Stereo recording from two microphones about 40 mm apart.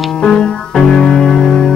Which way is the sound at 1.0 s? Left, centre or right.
Left.